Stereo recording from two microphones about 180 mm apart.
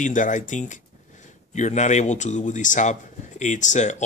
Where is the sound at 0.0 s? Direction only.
45° left (ahead or behind).